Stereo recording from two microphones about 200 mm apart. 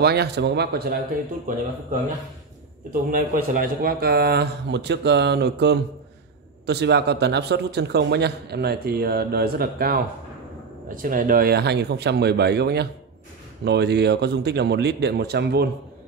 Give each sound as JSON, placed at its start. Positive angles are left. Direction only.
{"t": 0.0, "sound": "speech", "side_deg": -55}
{"t": 2.9, "sound": "a man's voice", "side_deg": -45}